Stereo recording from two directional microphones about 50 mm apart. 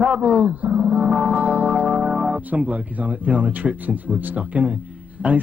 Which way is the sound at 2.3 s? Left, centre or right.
Right.